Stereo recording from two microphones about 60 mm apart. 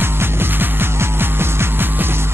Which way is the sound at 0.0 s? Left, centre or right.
Right.